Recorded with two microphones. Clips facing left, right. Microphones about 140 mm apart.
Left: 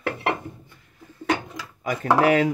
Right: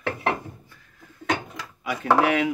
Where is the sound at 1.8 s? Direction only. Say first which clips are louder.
Left 2 dB; 45° left (ahead or behind).